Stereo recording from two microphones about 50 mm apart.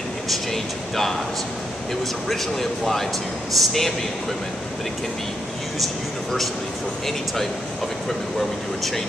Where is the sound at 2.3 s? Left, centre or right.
Centre.